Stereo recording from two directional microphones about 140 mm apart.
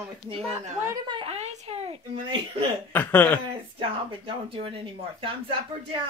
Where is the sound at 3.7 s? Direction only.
40° right (ahead or behind).